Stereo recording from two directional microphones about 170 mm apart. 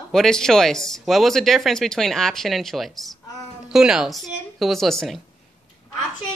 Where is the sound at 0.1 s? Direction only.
5° left (ahead or behind).